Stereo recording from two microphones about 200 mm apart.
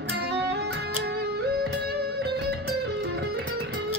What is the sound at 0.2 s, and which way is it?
Music, 55° right (ahead or behind).